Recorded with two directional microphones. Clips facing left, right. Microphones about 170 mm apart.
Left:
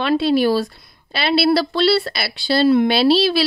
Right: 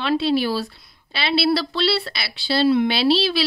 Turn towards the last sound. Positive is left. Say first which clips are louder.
# left 4 dB
turn(degrees=45)  # may be behind; listen again after turning